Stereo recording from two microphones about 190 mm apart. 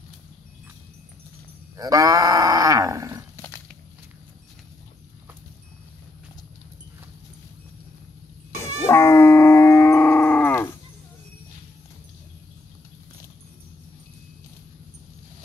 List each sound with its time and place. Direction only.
1.8 s cattle: 15° right (ahead or behind)
3.3 s a sound: 10° left (ahead or behind)
8.9 s dog: 15° left (ahead or behind)